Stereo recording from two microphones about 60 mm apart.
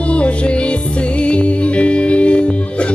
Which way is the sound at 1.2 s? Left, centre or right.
Left.